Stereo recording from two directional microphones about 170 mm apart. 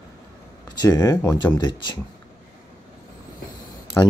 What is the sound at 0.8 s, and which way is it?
Speech, 20° left (ahead or behind).